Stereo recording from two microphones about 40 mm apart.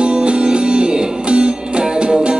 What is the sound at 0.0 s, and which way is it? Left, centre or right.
Music, right.